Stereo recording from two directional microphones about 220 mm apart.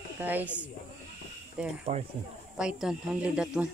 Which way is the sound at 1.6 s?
5° right (ahead or behind).